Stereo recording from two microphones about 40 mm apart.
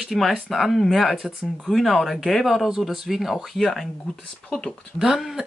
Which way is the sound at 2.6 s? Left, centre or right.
Centre.